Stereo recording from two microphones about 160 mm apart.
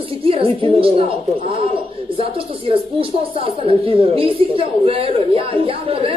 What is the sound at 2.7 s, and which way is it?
A woman's voice, 35° right (ahead or behind).